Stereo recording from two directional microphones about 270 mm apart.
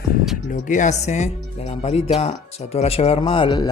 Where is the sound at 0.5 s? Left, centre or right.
Left.